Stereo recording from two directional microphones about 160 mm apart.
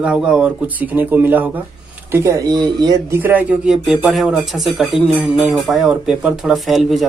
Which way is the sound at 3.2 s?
10° right (ahead or behind).